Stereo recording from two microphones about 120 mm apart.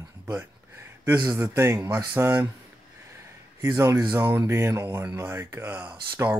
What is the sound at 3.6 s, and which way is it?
Speech, 25° right (ahead or behind).